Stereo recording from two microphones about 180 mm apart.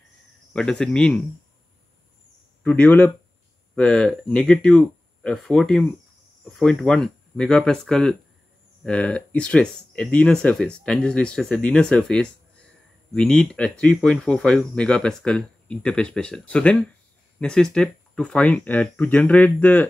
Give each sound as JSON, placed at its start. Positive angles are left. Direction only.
{"t": 0.5, "sound": "speech", "side_deg": 5}
{"t": 2.6, "sound": "speech", "side_deg": 10}